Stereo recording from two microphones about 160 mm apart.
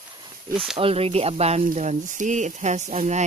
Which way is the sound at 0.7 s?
35° right (ahead or behind).